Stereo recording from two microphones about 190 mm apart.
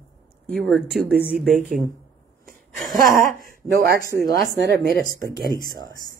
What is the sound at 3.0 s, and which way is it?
Speech, 45° right (ahead or behind).